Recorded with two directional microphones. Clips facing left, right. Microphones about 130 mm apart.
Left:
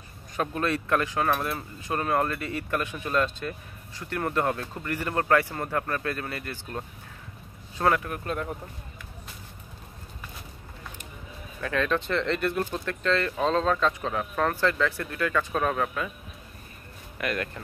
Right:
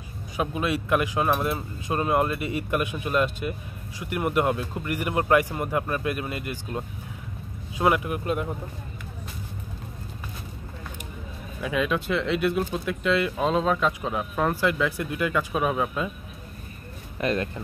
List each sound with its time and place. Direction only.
0.4 s speech: 10° right (ahead or behind)
11.6 s speech: 10° right (ahead or behind)
17.2 s speech: 25° right (ahead or behind)